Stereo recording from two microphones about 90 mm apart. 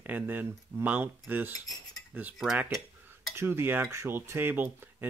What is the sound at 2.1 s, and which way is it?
Cutlery, 15° right (ahead or behind).